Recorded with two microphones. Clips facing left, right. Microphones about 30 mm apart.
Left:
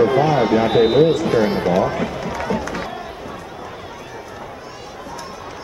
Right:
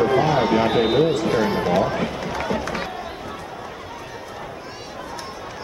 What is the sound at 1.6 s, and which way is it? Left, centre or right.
Speech, centre.